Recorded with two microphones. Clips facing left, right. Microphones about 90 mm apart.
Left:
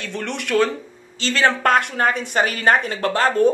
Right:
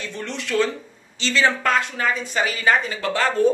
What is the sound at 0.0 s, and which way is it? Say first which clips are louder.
Speech: left 3 dB; 65° left (ahead or behind).